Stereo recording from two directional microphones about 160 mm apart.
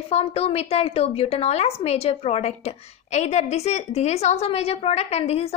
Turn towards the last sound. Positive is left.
turn(degrees=40)  # may be behind; listen again after turning